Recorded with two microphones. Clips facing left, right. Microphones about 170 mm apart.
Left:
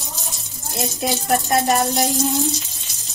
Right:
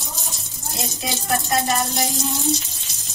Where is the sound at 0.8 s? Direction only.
55° left (ahead or behind).